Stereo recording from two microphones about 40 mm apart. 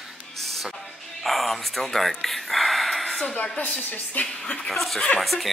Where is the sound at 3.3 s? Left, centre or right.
Left.